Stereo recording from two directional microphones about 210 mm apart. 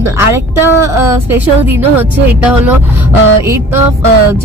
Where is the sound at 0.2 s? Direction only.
10° right (ahead or behind).